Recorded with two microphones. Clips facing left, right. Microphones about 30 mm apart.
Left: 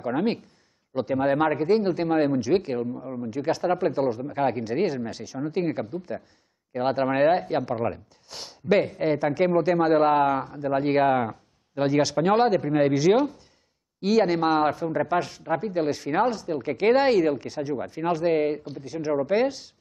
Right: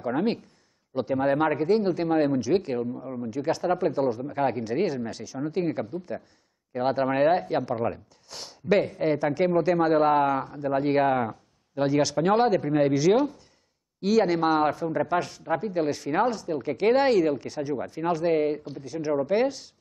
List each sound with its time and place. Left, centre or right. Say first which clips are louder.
0.0 s a man's voice: left 1 dB; centre
3.3 s a man's voice: left 1 dB; centre